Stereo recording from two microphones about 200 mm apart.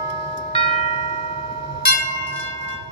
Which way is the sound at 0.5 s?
30° left (ahead or behind).